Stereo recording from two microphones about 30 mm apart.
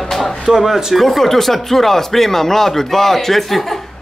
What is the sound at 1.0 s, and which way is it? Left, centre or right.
Speech, centre.